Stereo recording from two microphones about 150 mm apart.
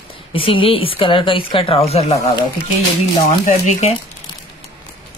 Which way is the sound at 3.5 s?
50° left (ahead or behind).